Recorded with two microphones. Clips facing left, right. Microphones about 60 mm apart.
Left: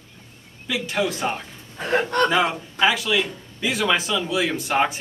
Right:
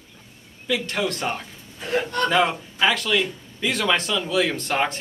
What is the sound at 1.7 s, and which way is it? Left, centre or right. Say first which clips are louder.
Speech: left 3 dB; left.